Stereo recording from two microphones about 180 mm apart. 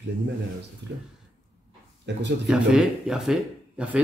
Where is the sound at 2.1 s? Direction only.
75° right (ahead or behind).